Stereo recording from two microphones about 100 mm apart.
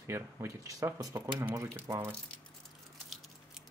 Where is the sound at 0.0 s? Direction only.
30° right (ahead or behind).